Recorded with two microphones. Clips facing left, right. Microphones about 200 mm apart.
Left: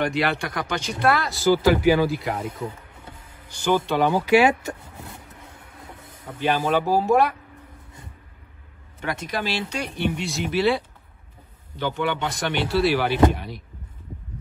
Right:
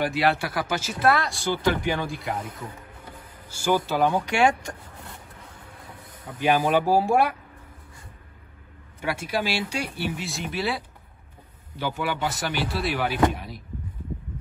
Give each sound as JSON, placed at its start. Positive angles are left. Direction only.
{"t": 0.0, "sound": "speech", "side_deg": 0}
{"t": 2.6, "sound": "music", "side_deg": 25}
{"t": 3.4, "sound": "speech", "side_deg": -10}
{"t": 6.4, "sound": "speech", "side_deg": -10}
{"t": 9.0, "sound": "speech", "side_deg": -10}